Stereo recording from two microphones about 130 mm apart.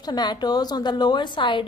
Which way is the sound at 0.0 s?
30° left (ahead or behind).